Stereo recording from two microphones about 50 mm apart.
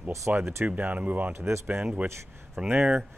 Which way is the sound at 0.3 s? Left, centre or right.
Right.